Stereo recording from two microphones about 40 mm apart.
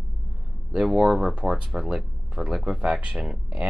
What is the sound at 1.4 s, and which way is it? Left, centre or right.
Speech, right.